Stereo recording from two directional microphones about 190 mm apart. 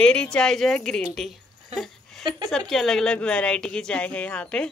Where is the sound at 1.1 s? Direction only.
Centre (ahead or behind).